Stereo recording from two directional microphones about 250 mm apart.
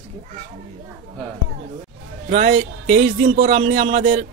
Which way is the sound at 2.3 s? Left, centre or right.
Right.